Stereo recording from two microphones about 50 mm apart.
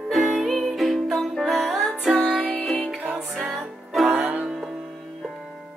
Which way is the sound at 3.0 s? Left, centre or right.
Right.